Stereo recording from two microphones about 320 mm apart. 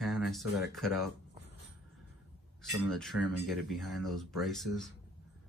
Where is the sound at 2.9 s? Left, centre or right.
Centre.